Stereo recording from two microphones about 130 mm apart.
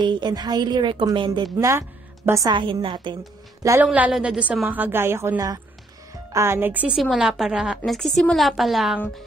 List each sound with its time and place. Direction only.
0.0 s a woman's voice: 35° right (ahead or behind)
1.7 s a woman's voice: 20° right (ahead or behind)
2.5 s a woman's voice: 40° right (ahead or behind)
3.8 s a woman's voice: 10° right (ahead or behind)
7.0 s a woman's voice: centre (ahead or behind)